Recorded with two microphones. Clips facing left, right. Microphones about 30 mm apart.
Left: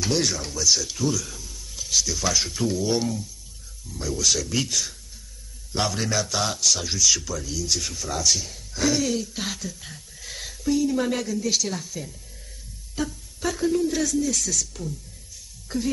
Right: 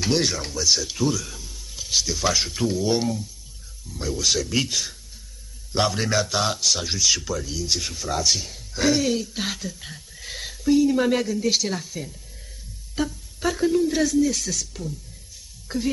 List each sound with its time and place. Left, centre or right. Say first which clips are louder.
0.0 s a man's voice: right 2 dB; centre